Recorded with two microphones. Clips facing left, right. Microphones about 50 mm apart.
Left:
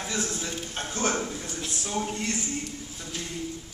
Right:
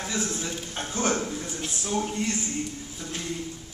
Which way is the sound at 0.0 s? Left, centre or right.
Centre.